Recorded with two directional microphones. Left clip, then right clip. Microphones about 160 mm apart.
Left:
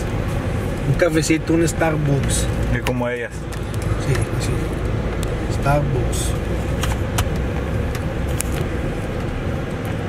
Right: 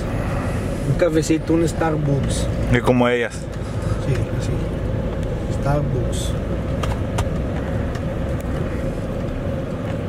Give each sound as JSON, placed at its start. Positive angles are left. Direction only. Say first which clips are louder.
{"t": 0.9, "sound": "speech", "louder": "even", "side_deg": 0}
{"t": 2.7, "sound": "speech", "louder": "right 7 dB", "side_deg": -35}